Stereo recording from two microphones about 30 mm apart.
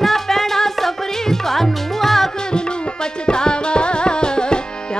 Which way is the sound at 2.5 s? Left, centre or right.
Left.